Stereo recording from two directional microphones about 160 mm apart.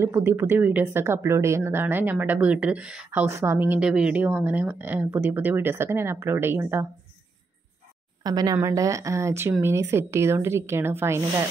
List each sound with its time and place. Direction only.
0.0 s speech: 15° right (ahead or behind)
3.1 s speech: 15° right (ahead or behind)
8.2 s speech: 25° right (ahead or behind)